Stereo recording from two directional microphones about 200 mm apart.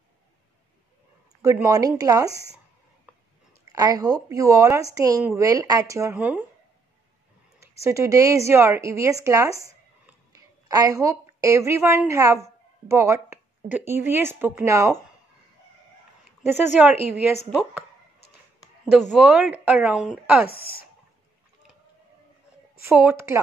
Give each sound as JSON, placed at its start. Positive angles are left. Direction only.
{"t": 1.4, "sound": "a woman's voice", "side_deg": -15}
{"t": 3.6, "sound": "a woman's voice", "side_deg": -20}
{"t": 7.8, "sound": "a woman's voice", "side_deg": -15}
{"t": 16.7, "sound": "a woman's voice", "side_deg": -10}
{"t": 18.9, "sound": "a woman's voice", "side_deg": -5}
{"t": 20.4, "sound": "speech", "side_deg": 50}
{"t": 22.8, "sound": "a woman's voice", "side_deg": -10}